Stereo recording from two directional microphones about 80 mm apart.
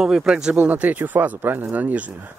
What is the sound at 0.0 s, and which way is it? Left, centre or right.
Speech, centre.